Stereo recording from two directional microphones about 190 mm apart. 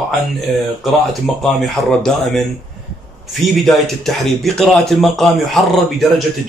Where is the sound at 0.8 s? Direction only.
Centre (ahead or behind).